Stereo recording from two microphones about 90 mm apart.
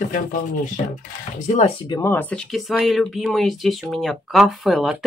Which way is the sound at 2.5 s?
Centre (ahead or behind).